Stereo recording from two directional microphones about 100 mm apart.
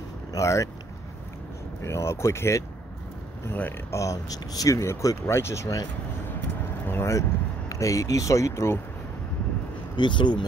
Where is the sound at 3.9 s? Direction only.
35° left (ahead or behind).